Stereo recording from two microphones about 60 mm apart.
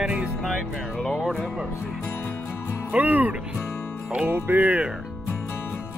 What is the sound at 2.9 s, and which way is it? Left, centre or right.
Speech, right.